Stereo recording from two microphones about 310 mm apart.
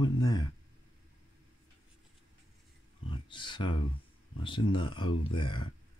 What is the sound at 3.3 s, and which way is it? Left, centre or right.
Speech, centre.